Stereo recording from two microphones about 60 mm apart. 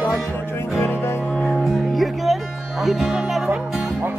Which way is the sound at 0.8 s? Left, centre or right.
Left.